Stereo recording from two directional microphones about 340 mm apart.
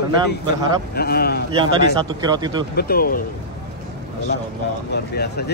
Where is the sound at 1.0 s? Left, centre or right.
Left.